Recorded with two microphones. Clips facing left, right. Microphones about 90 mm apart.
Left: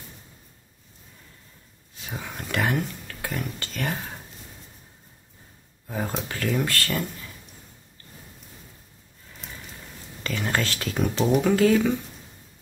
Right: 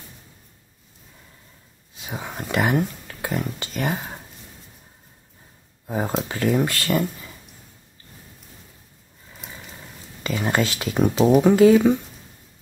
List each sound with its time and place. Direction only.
2.0 s a sound: 20° right (ahead or behind)
3.3 s speech: 20° right (ahead or behind)
5.9 s speech: 25° right (ahead or behind)
9.4 s horse: 5° right (ahead or behind)
10.2 s speech: 15° right (ahead or behind)
11.1 s speech: 5° right (ahead or behind)
11.5 s speech: 15° right (ahead or behind)